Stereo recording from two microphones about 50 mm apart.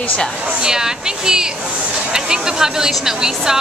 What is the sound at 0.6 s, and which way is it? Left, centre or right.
Speech, centre.